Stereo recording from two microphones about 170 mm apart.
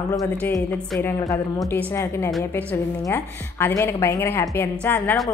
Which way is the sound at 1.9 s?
15° left (ahead or behind).